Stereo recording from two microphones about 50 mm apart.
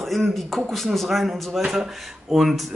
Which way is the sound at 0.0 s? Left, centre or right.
Centre.